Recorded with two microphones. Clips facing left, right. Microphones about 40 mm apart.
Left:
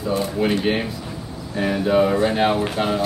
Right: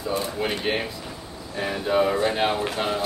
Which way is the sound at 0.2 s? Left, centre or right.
Centre.